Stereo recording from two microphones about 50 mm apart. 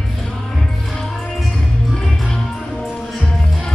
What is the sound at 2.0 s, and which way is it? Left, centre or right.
Music, centre.